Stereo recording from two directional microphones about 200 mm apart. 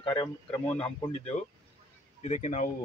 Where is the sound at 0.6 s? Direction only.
5° left (ahead or behind).